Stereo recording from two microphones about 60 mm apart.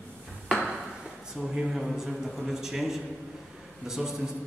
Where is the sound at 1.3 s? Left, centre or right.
Centre.